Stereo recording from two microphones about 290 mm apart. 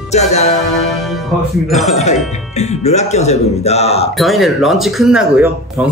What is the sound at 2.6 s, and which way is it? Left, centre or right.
Speech, left.